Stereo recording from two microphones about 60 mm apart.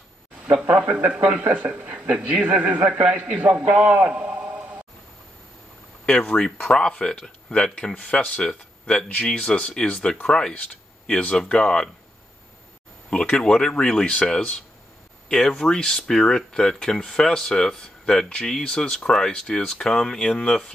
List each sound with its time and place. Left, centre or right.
1.1 s a man's voice: centre
6.0 s speech: centre
13.1 s speech: centre